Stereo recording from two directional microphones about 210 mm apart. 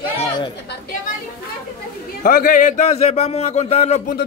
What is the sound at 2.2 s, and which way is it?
A man's voice, 40° left (ahead or behind).